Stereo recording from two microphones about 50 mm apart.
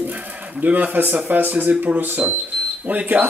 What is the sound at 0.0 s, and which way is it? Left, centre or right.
Speech, right.